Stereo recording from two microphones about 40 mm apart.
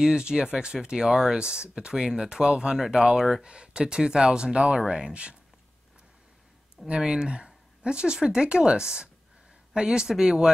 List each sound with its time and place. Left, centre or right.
0.0 s speech: right
7.0 s speech: right